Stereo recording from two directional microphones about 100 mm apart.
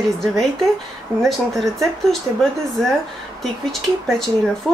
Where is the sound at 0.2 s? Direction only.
5° left (ahead or behind).